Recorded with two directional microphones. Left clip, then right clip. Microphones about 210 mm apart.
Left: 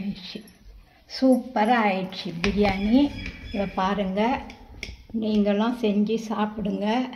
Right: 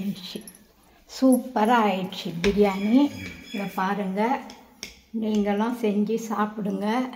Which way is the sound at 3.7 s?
30° left (ahead or behind).